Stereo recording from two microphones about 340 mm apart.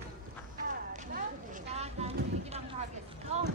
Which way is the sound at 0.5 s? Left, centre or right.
Right.